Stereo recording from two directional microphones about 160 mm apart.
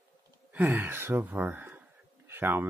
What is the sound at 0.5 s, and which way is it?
Speech, 15° right (ahead or behind).